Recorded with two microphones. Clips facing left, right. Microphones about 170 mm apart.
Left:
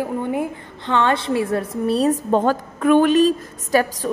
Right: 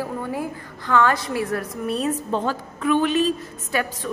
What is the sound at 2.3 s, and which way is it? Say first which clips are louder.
A woman's voice: left 6 dB; 50° left (ahead or behind).